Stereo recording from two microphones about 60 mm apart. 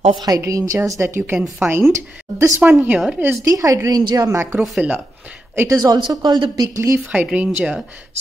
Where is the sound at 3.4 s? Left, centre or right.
Right.